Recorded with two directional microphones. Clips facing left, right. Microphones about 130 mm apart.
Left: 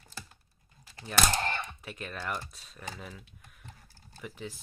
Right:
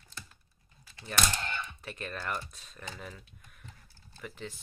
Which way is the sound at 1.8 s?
5° left (ahead or behind).